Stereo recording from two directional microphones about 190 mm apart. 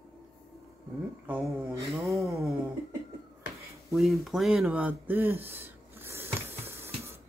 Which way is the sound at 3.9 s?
Centre (ahead or behind).